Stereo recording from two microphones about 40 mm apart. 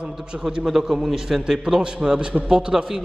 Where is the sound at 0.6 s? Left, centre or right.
Centre.